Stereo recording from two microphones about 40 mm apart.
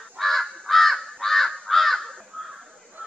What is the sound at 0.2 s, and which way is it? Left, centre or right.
Crow, centre.